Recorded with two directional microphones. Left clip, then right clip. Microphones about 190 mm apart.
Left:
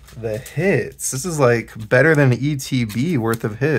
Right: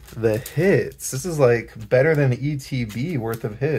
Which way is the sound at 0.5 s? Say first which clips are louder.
Even; centre (ahead or behind).